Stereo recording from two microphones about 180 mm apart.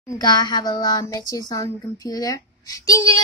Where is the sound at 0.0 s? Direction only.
20° left (ahead or behind).